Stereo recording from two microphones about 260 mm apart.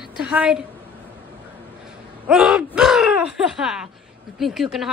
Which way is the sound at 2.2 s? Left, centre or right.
Centre.